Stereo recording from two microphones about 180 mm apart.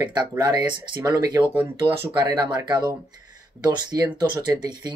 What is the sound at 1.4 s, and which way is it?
Speech, 10° right (ahead or behind).